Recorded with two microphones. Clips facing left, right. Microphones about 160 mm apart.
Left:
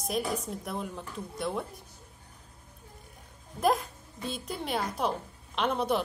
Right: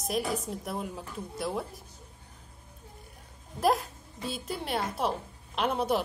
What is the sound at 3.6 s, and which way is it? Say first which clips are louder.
A woman's voice: even; centre (ahead or behind).